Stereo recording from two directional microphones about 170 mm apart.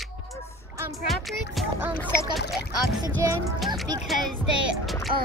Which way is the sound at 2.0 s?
15° left (ahead or behind).